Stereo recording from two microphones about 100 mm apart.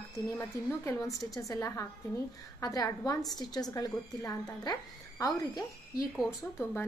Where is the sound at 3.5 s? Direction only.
40° left (ahead or behind).